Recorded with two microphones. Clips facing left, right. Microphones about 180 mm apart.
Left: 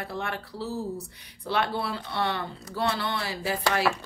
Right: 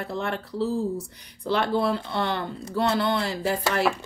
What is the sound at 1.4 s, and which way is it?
Speech, 45° right (ahead or behind).